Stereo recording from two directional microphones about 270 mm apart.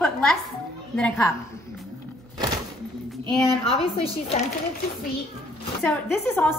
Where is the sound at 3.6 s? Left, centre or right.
Left.